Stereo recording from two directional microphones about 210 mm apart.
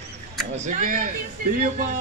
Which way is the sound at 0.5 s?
35° right (ahead or behind).